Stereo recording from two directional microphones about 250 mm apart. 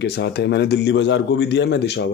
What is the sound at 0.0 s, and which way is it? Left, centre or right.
Speech, left.